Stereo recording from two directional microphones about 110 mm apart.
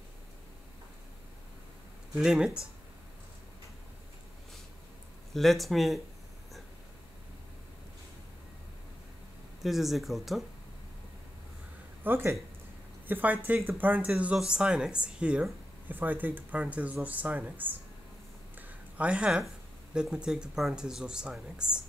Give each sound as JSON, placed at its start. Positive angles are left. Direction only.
{"t": 2.1, "sound": "speech", "side_deg": -5}
{"t": 5.3, "sound": "speech", "side_deg": 0}
{"t": 9.6, "sound": "speech", "side_deg": 0}
{"t": 12.0, "sound": "speech", "side_deg": -20}
{"t": 18.9, "sound": "speech", "side_deg": -10}